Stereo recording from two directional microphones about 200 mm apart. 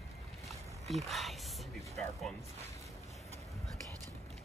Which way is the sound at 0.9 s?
Centre (ahead or behind).